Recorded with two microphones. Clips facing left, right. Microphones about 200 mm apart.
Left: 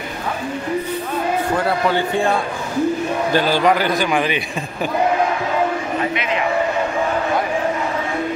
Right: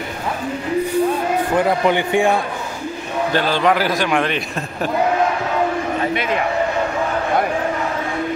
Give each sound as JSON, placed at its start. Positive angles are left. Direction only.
{"t": 1.6, "sound": "a man's voice", "side_deg": -15}
{"t": 3.3, "sound": "a man's voice", "side_deg": 10}
{"t": 3.7, "sound": "a man's voice", "side_deg": 0}